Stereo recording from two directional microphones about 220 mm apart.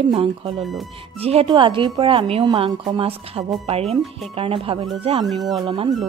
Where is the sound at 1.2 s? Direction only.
25° right (ahead or behind).